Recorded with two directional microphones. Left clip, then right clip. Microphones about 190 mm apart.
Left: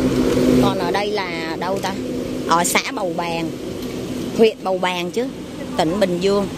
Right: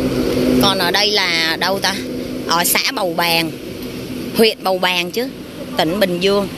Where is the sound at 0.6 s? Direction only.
5° left (ahead or behind).